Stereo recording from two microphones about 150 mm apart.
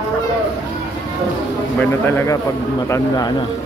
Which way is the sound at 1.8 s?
15° left (ahead or behind).